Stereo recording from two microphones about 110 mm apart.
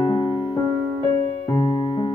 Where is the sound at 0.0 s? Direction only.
40° left (ahead or behind).